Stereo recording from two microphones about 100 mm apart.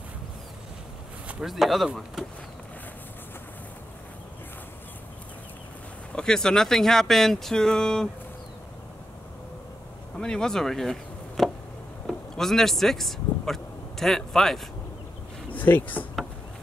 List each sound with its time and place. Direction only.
1.4 s speech: centre (ahead or behind)
6.1 s speech: 5° left (ahead or behind)
10.1 s chop: 5° left (ahead or behind)
12.1 s speech: 5° left (ahead or behind)
15.5 s speech: 15° left (ahead or behind)